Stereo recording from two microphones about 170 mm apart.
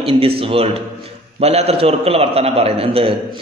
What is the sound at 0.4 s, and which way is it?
A man's voice, 35° right (ahead or behind).